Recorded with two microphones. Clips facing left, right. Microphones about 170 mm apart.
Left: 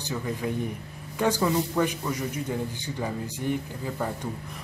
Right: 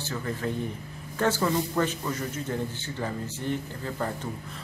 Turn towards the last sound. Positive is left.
turn(degrees=10)  # may be behind; listen again after turning